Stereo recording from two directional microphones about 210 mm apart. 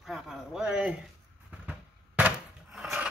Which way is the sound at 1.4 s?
5° right (ahead or behind).